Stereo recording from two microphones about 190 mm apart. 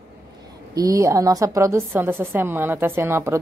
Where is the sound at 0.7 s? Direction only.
20° right (ahead or behind).